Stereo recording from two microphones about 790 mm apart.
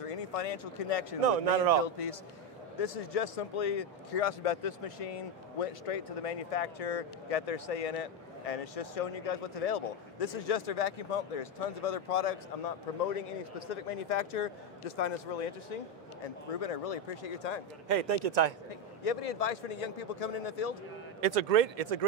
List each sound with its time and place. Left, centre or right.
0.0 s speech: left
1.2 s speech: right
1.8 s a man's voice: left
16.5 s speech: left
17.8 s speech: right
19.0 s speech: left
21.2 s speech: right